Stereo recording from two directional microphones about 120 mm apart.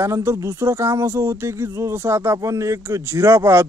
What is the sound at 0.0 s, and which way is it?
A man's voice, 20° right (ahead or behind).